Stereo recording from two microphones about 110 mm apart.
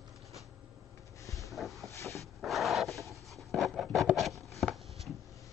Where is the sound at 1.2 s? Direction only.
30° left (ahead or behind).